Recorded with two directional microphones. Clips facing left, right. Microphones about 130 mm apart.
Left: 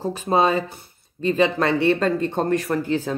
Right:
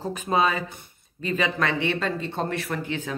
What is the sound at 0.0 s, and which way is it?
Speech, 35° left (ahead or behind).